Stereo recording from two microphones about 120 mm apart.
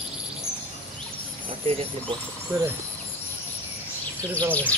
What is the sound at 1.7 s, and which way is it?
Speech, 50° right (ahead or behind).